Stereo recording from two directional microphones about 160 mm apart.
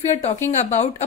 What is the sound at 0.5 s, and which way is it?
Speech, 45° left (ahead or behind).